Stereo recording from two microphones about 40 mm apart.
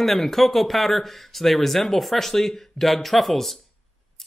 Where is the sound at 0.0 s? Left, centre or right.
Centre.